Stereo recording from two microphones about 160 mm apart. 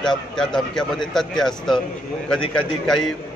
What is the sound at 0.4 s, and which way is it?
A man's voice, 5° left (ahead or behind).